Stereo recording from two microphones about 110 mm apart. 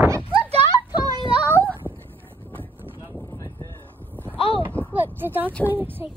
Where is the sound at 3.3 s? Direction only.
30° left (ahead or behind).